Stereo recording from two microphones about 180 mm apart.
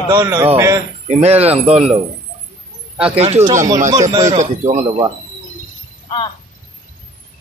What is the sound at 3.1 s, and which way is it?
Speech, 35° right (ahead or behind).